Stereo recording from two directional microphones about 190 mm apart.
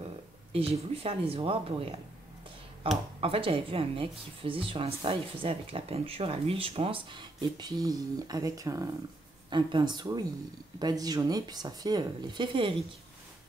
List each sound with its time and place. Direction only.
0.0 s speech: 30° right (ahead or behind)